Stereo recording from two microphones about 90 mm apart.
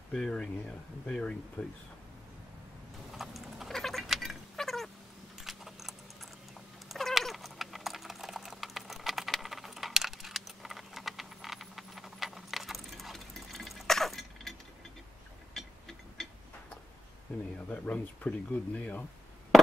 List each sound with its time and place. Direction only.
0.1 s speech: 10° left (ahead or behind)
3.1 s cat: 5° right (ahead or behind)
5.4 s keys jangling: 5° right (ahead or behind)
6.9 s typing: centre (ahead or behind)
15.5 s a sound: 5° left (ahead or behind)
17.6 s speech: 15° left (ahead or behind)